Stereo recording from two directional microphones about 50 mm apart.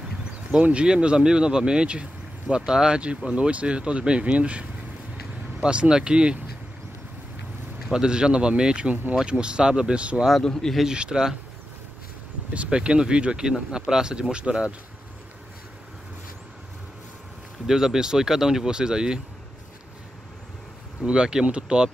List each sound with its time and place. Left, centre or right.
0.2 s speech: right
7.9 s speech: centre
10.4 s a man's voice: centre
10.8 s speech: centre
12.5 s speech: centre
17.6 s speech: centre
21.0 s speech: centre